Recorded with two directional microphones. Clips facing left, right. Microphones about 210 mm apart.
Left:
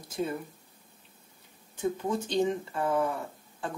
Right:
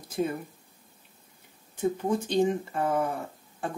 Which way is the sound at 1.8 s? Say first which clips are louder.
Right 3 dB; 50° right (ahead or behind).